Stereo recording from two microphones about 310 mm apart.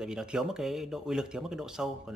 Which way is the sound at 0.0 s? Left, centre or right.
Centre.